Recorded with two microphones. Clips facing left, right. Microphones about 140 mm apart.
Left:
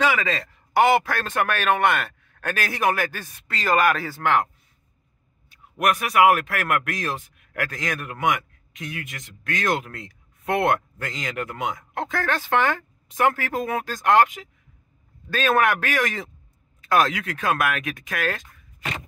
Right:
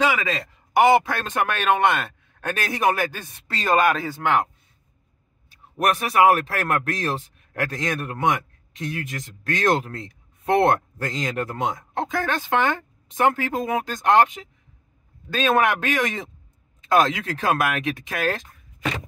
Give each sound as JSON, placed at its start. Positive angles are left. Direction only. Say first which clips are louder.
{"t": 0.0, "sound": "a man's voice", "louder": "even", "side_deg": -15}
{"t": 5.5, "sound": "speech", "louder": "even", "side_deg": -30}
{"t": 12.0, "sound": "a man's voice", "louder": "right 1 dB", "side_deg": -20}